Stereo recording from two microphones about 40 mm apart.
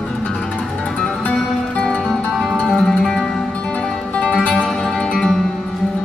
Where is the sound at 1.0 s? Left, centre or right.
Left.